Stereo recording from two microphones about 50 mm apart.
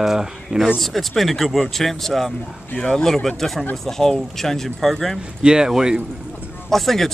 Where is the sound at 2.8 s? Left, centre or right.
Centre.